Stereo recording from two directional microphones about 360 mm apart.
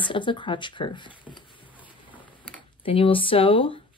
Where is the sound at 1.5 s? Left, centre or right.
Centre.